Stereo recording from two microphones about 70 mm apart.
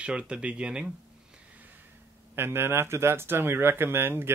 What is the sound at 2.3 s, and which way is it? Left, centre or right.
Speech, right.